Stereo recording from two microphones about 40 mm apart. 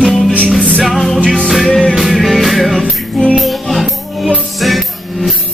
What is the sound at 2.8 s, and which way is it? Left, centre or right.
Music, left.